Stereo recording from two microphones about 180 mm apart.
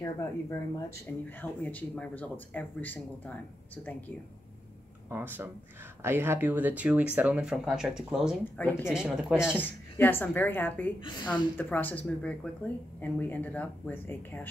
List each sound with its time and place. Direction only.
0.0 s speech: 20° left (ahead or behind)
5.1 s speech: 10° right (ahead or behind)
8.5 s speech: 10° left (ahead or behind)
8.9 s speech: 5° right (ahead or behind)
9.6 s speech: 10° left (ahead or behind)